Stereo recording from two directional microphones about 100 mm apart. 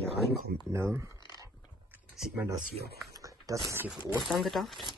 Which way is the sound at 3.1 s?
35° right (ahead or behind).